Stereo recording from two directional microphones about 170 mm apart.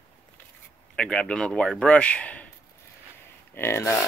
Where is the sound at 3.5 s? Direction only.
15° left (ahead or behind).